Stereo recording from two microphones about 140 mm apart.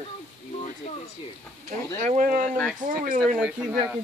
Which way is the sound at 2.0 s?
65° right (ahead or behind).